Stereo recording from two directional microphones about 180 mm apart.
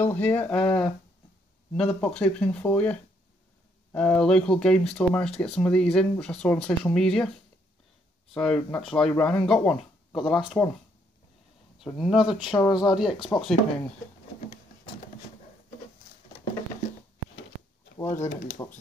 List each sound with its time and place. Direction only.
0.0 s speech: 10° left (ahead or behind)
8.3 s speech: 5° left (ahead or behind)
8.5 s speech: 15° left (ahead or behind)
8.8 s speech: 5° left (ahead or behind)
12.0 s speech: centre (ahead or behind)
12.5 s speech: 20° left (ahead or behind)
17.9 s speech: 15° left (ahead or behind)